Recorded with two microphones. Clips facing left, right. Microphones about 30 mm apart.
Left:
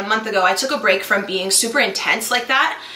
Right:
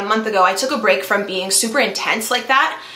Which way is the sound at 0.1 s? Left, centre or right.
Centre.